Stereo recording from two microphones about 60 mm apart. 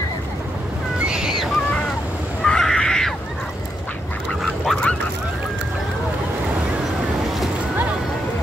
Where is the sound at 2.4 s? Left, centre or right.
Centre.